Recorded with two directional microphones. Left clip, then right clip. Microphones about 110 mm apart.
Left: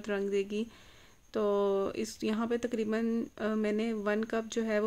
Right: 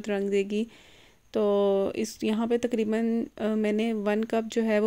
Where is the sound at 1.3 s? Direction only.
30° right (ahead or behind).